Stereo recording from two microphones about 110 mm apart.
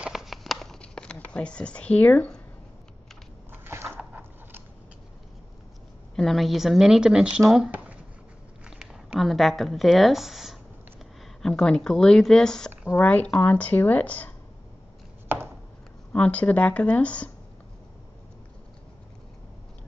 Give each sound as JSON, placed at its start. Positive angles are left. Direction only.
{"t": 0.0, "sound": "a sound", "side_deg": -5}
{"t": 3.6, "sound": "biting", "side_deg": -20}
{"t": 6.1, "sound": "speech", "side_deg": 0}
{"t": 8.6, "sound": "a sound", "side_deg": -5}
{"t": 11.4, "sound": "speech", "side_deg": 5}
{"t": 15.2, "sound": "chopping", "side_deg": -20}
{"t": 16.1, "sound": "speech", "side_deg": 10}